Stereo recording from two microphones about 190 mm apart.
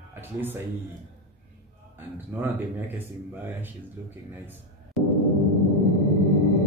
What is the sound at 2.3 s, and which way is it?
Speech, 10° right (ahead or behind).